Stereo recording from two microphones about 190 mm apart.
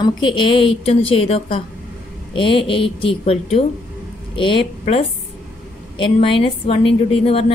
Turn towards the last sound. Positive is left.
turn(degrees=30)  # may be behind; listen again after turning